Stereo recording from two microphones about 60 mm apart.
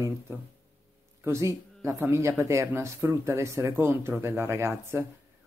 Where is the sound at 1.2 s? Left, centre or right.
Right.